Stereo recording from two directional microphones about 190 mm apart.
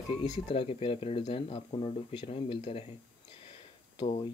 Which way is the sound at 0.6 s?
30° left (ahead or behind).